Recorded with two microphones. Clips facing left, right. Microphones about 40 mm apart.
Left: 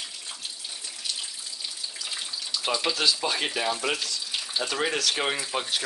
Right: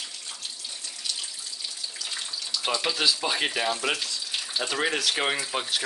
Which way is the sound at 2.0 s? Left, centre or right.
Centre.